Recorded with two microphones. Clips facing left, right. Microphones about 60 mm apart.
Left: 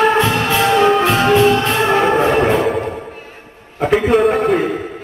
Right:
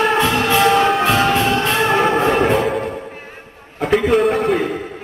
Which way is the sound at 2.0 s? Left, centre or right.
Centre.